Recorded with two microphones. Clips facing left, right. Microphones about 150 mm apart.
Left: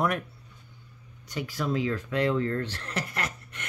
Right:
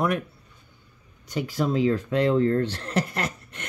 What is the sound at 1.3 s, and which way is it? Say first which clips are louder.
Speech: right 5 dB; 25° right (ahead or behind).